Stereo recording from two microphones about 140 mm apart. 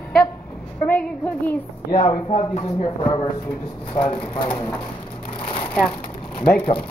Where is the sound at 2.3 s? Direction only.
45° left (ahead or behind).